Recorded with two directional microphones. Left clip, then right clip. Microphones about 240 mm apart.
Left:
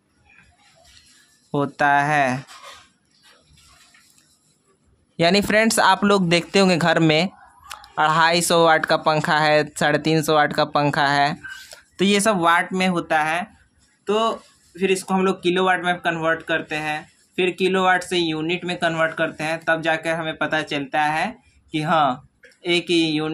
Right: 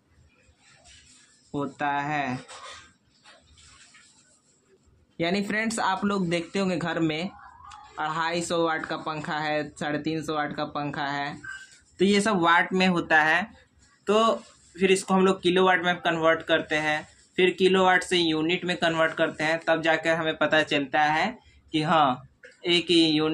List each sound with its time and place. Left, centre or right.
1.5 s speech: left
5.1 s speech: left
12.0 s speech: left; by 23.3 s centre